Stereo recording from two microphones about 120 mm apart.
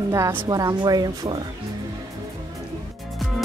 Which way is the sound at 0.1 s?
30° right (ahead or behind).